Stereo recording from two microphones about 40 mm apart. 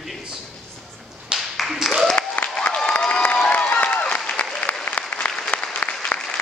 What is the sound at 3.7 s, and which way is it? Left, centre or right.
Applause, left.